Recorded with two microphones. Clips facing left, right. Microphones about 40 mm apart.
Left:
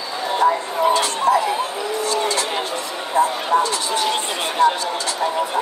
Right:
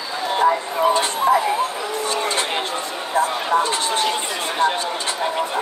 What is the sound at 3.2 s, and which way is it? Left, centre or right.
Speech, right.